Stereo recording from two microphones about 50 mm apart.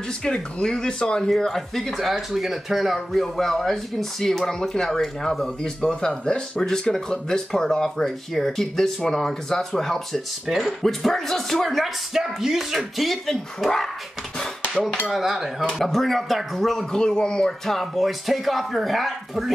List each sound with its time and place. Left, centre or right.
0.2 s speech: centre
1.3 s speech: centre
15.0 s speech: centre
17.5 s speech: centre